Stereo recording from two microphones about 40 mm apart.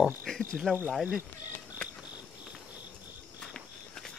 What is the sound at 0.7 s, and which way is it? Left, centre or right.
Speech, left.